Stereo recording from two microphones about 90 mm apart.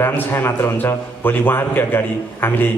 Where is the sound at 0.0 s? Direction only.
25° left (ahead or behind).